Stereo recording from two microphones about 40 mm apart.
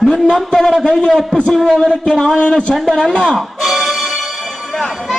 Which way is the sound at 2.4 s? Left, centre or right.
Left.